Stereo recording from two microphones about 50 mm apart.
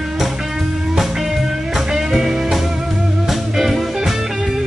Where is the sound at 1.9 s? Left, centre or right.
Centre.